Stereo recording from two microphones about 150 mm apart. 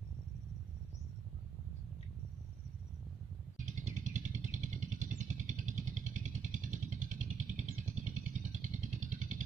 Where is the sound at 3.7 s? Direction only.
55° right (ahead or behind).